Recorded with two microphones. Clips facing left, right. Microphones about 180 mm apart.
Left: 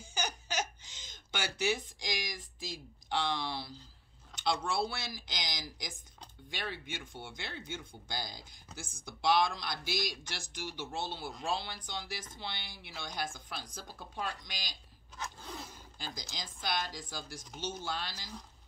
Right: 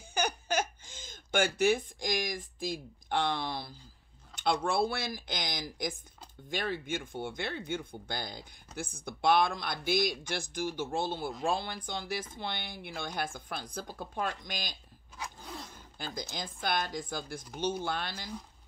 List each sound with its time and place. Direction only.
0.1 s laughter: 55° right (ahead or behind)
4.4 s speech: 55° right (ahead or behind)
15.1 s zipper: centre (ahead or behind)
16.0 s speech: 55° right (ahead or behind)